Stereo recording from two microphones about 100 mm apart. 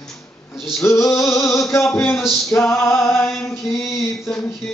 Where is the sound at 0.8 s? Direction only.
30° left (ahead or behind).